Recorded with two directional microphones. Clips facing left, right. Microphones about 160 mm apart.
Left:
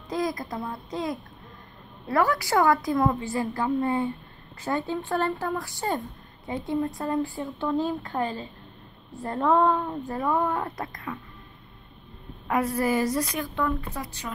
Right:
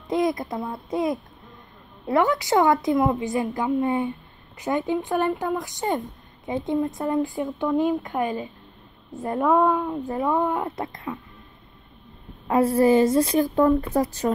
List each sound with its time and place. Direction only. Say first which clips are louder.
0.1 s speech: right 5 dB; 25° right (ahead or behind)
12.4 s speech: right 7 dB; 30° right (ahead or behind)